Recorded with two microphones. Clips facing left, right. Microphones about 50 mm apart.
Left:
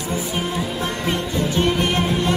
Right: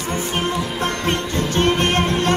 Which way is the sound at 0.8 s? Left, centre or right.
Right.